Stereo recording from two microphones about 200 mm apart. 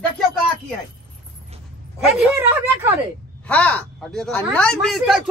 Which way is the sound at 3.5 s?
5° left (ahead or behind).